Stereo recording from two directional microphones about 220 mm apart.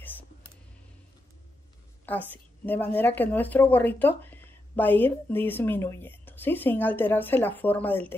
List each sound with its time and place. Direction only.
2.0 s speech: 10° left (ahead or behind)